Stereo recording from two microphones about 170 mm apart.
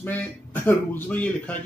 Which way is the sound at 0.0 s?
10° left (ahead or behind).